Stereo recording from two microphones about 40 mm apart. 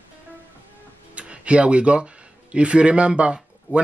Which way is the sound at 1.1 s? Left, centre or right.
Right.